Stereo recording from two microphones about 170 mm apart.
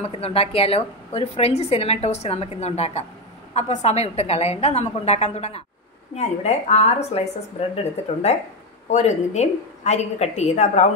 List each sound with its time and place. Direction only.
0.0 s a woman's voice: 35° left (ahead or behind)